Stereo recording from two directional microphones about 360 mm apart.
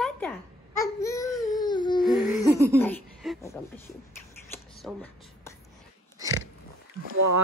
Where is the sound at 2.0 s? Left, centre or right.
Centre.